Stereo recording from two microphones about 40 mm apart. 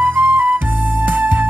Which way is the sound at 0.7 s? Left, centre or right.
Right.